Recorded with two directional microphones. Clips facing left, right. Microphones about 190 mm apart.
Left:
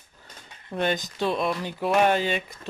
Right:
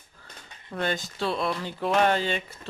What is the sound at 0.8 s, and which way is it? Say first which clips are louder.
Speech: left 3 dB; 20° left (ahead or behind).